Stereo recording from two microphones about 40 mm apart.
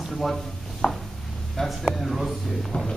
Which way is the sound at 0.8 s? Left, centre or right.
Left.